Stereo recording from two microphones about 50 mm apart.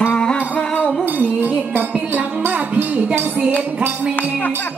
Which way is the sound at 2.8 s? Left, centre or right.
Right.